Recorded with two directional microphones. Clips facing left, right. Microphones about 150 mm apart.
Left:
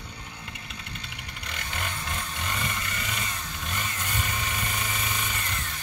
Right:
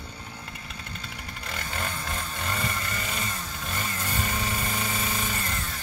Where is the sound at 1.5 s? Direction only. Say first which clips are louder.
Right 2 dB; 40° right (ahead or behind).